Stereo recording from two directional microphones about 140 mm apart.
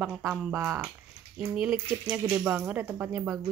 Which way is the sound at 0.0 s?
10° right (ahead or behind).